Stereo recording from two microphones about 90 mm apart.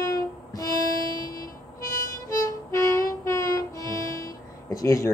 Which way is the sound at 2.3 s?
35° left (ahead or behind).